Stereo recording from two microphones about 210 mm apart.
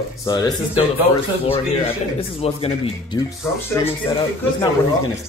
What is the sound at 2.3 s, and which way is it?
Speech, 25° left (ahead or behind).